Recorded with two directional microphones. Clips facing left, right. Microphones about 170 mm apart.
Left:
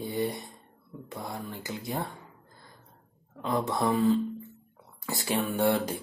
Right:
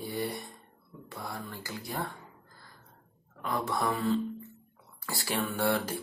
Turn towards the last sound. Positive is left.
turn(degrees=20)  # may be behind; listen again after turning